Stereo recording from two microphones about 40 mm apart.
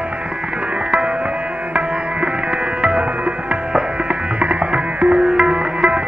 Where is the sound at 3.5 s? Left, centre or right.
Right.